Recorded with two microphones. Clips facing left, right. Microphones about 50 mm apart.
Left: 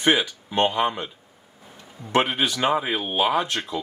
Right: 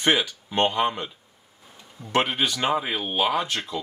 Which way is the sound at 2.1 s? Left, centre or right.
Centre.